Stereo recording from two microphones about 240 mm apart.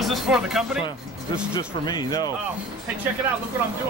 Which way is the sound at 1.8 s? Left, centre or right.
Centre.